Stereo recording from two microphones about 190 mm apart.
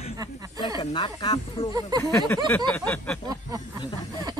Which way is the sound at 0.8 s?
25° left (ahead or behind).